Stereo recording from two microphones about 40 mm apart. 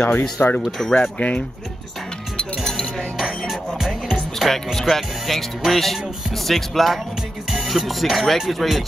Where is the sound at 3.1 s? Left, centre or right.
Centre.